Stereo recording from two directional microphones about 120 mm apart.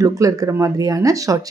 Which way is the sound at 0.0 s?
30° right (ahead or behind).